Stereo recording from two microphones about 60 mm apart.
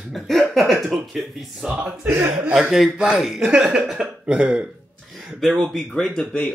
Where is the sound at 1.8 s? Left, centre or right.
Right.